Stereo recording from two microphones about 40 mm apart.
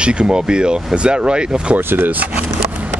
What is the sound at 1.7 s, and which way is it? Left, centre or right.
Speech, right.